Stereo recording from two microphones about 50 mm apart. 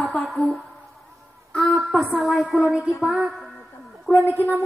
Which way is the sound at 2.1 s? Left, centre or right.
Centre.